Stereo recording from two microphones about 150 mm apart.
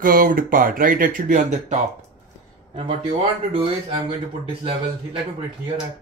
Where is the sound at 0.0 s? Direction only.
70° right (ahead or behind).